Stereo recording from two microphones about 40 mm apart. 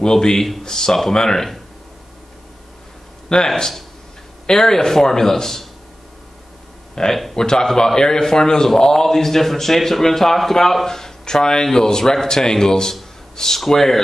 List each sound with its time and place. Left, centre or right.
0.0 s a man's voice: centre
3.4 s a man's voice: centre
7.0 s a man's voice: centre